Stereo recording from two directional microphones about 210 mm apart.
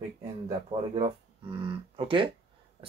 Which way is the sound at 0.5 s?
25° right (ahead or behind).